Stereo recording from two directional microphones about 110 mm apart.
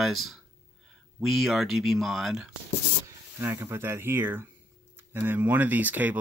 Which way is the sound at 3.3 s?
25° right (ahead or behind).